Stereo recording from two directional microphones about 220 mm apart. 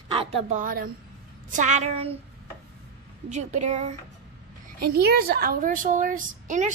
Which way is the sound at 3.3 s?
30° right (ahead or behind).